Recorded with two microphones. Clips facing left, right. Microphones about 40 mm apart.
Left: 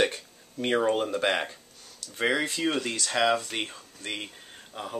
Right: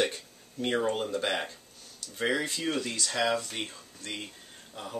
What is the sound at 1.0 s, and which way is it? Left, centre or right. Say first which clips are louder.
Speech: left 4 dB; left.